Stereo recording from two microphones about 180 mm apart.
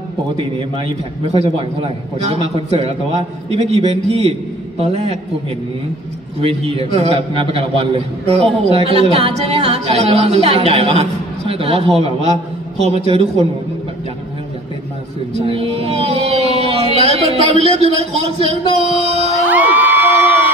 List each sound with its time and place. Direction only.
0.6 s a man's voice: 35° right (ahead or behind)
6.7 s a man's voice: 35° right (ahead or behind)
15.4 s music: 30° right (ahead or behind)
17.0 s a man's voice: 35° right (ahead or behind)
19.4 s crowd: 10° right (ahead or behind)